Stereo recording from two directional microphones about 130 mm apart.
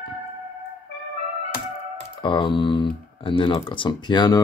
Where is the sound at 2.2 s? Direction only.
40° left (ahead or behind).